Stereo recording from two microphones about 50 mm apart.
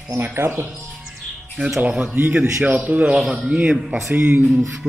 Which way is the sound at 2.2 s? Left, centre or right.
Right.